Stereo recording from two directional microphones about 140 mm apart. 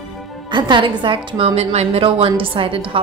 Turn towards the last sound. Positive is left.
turn(degrees=-40)  # may be behind; listen again after turning